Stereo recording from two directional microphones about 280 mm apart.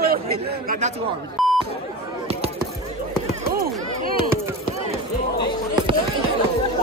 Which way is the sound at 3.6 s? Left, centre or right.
Right.